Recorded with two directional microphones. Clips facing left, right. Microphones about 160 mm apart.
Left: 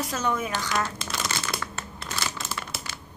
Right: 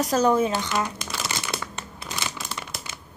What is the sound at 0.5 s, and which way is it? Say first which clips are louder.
Speech: right 2 dB; 15° right (ahead or behind).